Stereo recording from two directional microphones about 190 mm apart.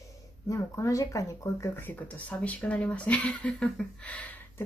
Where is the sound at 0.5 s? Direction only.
15° left (ahead or behind).